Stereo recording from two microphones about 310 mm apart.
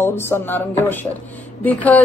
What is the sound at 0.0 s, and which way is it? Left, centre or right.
A woman's voice, centre.